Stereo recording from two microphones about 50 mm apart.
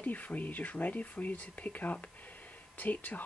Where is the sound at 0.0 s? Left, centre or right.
Left.